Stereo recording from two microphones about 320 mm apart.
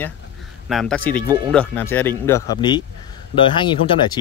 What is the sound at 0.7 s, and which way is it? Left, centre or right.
Speech, centre.